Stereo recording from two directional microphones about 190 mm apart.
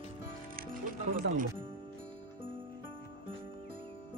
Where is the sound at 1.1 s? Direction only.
45° right (ahead or behind).